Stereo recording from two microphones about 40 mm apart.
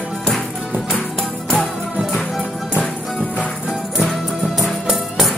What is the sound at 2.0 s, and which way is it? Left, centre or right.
Music, centre.